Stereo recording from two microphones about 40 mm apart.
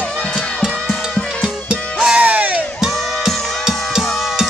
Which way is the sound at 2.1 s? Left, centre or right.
Right.